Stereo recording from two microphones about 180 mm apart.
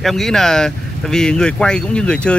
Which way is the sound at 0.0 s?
Centre (ahead or behind).